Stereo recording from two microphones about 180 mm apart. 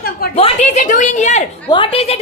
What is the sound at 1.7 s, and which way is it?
Speech, 30° left (ahead or behind).